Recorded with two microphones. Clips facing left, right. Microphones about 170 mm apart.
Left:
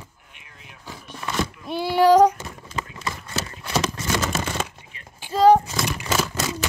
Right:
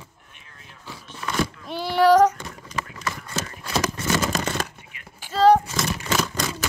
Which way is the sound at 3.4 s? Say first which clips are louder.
Left 1 dB; 25° left (ahead or behind).